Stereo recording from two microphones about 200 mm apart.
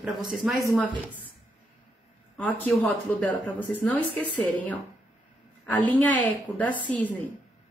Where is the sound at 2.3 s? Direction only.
5° left (ahead or behind).